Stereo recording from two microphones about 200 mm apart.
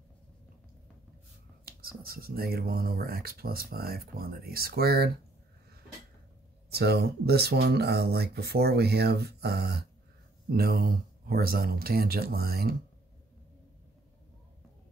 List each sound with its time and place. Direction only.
1.7 s speech: 50° right (ahead or behind)
6.7 s speech: 55° right (ahead or behind)